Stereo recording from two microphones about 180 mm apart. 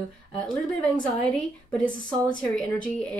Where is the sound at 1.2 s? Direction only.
5° left (ahead or behind).